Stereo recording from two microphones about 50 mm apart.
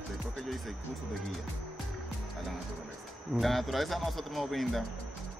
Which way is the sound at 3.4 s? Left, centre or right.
Centre.